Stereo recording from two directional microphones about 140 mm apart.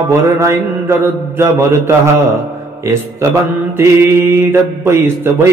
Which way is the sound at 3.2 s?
20° right (ahead or behind).